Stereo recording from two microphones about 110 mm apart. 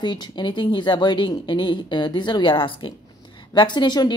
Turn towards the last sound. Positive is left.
turn(degrees=40)  # may be behind; listen again after turning